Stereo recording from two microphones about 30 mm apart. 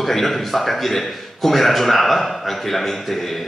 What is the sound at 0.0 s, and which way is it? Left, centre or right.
A man's voice, centre.